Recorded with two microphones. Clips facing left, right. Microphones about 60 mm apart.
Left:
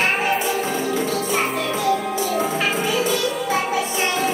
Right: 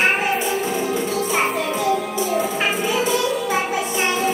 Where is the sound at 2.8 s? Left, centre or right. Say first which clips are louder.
Right 1 dB; right.